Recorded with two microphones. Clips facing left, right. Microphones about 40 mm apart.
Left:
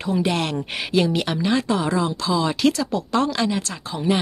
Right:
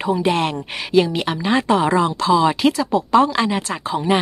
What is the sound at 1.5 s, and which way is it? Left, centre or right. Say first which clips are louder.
Speech: right 7 dB; right.